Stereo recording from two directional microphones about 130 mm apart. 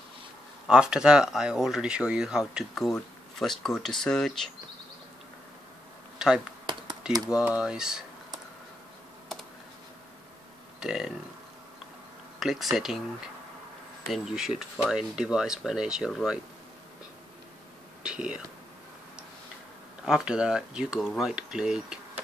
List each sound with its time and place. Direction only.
0.7 s speech: 5° right (ahead or behind)
6.1 s computer keyboard: 5° right (ahead or behind)
6.6 s computer keyboard: 35° right (ahead or behind)
7.2 s speech: 10° right (ahead or behind)
10.8 s speech: 5° right (ahead or behind)
12.4 s speech: centre (ahead or behind)
18.0 s speech: 5° right (ahead or behind)
20.1 s speech: 5° right (ahead or behind)